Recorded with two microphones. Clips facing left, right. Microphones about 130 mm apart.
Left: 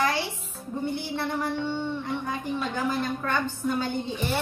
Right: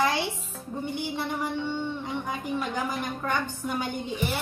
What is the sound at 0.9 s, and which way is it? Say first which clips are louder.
A woman's voice: left 1 dB; 15° right (ahead or behind).